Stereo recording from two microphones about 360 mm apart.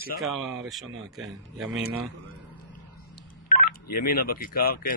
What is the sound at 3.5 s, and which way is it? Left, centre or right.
Speech, left.